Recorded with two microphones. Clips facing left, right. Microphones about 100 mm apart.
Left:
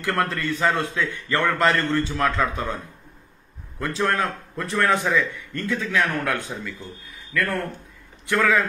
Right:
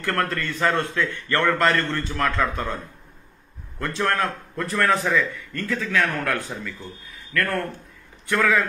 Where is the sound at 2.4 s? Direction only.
15° left (ahead or behind).